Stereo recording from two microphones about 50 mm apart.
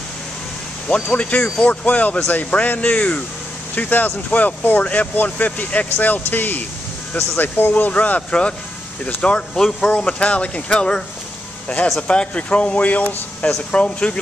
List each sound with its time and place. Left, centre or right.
0.8 s speech: left
9.6 s speech: centre
12.1 s speech: left